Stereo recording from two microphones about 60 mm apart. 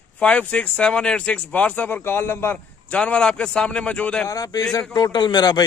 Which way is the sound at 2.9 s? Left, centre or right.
Centre.